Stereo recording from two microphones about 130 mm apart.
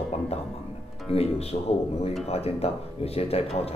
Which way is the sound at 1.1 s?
50° left (ahead or behind).